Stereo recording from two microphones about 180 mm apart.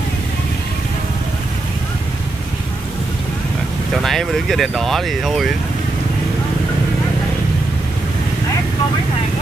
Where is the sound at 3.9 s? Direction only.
Centre (ahead or behind).